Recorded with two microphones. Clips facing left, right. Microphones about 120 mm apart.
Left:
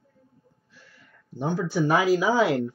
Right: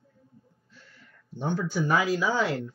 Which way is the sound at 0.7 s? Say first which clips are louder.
Even; 5° left (ahead or behind).